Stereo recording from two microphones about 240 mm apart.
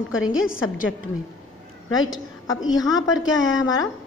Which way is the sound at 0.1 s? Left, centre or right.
Left.